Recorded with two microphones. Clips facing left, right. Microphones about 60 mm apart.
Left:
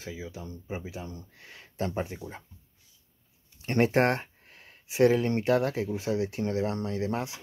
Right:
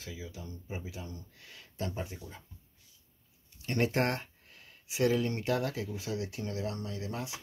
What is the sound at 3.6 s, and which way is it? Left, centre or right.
Speech, left.